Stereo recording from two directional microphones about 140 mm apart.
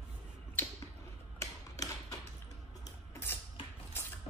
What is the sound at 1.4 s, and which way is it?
Tick-tock, 25° left (ahead or behind).